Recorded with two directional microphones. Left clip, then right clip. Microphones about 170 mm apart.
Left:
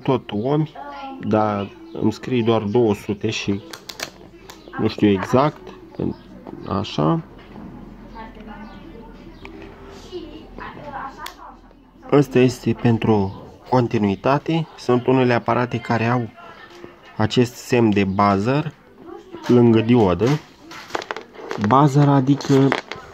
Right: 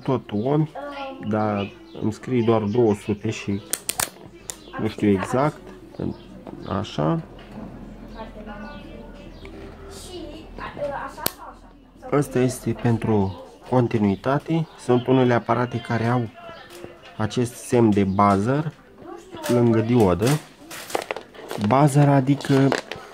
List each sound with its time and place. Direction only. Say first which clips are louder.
0.0 s speech: left 3 dB; 20° left (ahead or behind)
4.8 s speech: left 4 dB; 25° left (ahead or behind)
5.3 s a sound: left 4 dB; 15° left (ahead or behind)
6.6 s speech: left 3 dB; 5° left (ahead or behind)
12.1 s speech: left 6 dB; 15° left (ahead or behind)
21.6 s speech: left 3 dB; 5° right (ahead or behind)